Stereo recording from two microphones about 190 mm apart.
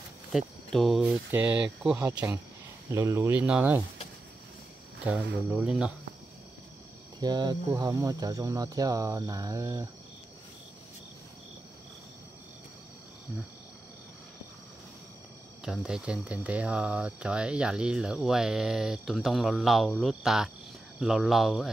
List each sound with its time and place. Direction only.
0.3 s speech: centre (ahead or behind)
5.0 s speech: 10° right (ahead or behind)
7.2 s speech: 20° right (ahead or behind)
15.6 s speech: 5° right (ahead or behind)